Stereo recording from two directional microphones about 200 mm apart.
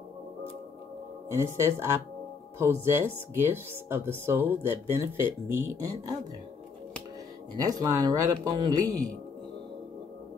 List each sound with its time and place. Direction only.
1.3 s speech: 15° right (ahead or behind)
7.6 s speech: 20° right (ahead or behind)